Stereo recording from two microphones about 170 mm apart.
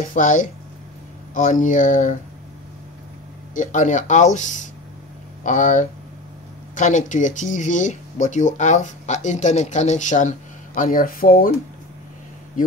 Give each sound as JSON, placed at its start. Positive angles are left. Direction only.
{"t": 0.0, "sound": "speech", "side_deg": 50}
{"t": 3.5, "sound": "speech", "side_deg": 50}